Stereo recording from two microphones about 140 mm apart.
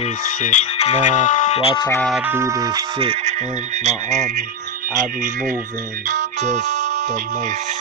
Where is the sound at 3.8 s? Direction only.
55° right (ahead or behind).